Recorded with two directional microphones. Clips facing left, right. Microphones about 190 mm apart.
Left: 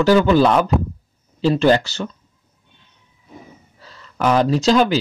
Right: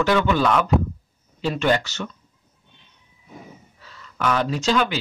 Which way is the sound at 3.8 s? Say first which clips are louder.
Left 5 dB; 35° left (ahead or behind).